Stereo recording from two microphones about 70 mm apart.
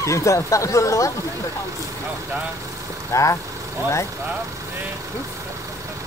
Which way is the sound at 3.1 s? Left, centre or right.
Left.